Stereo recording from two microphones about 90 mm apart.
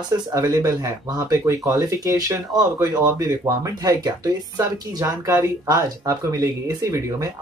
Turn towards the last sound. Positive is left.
turn(degrees=-40)  # may be behind; listen again after turning